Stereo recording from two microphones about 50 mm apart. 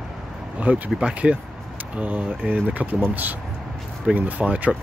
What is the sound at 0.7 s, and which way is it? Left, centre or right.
Speech, right.